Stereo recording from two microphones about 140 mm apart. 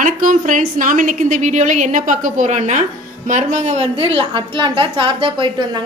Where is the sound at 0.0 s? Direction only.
70° right (ahead or behind).